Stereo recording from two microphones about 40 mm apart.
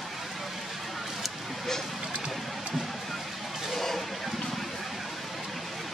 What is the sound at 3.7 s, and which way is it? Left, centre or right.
Toilet flush, centre.